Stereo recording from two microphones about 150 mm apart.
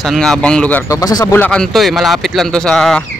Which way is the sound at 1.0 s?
25° left (ahead or behind).